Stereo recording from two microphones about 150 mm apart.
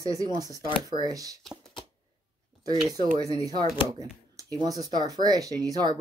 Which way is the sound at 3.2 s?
25° right (ahead or behind).